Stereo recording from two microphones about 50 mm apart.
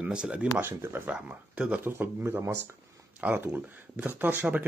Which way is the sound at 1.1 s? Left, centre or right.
Right.